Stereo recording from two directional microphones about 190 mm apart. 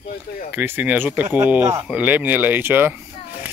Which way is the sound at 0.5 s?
10° right (ahead or behind).